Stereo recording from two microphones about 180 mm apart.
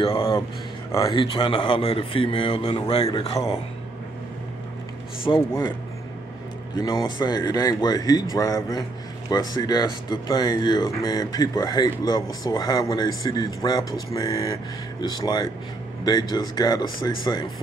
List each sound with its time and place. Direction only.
0.0 s a sound: 30° left (ahead or behind)
0.9 s speech: 20° left (ahead or behind)
5.3 s speech: 20° left (ahead or behind)
6.8 s speech: 20° left (ahead or behind)